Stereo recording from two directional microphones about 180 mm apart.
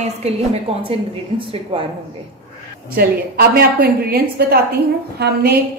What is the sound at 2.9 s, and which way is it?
A woman's voice, 60° right (ahead or behind).